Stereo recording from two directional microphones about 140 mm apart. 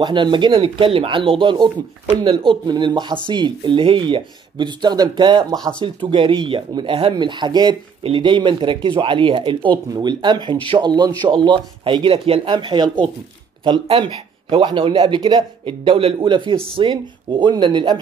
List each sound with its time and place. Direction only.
0.0 s speech: 35° right (ahead or behind)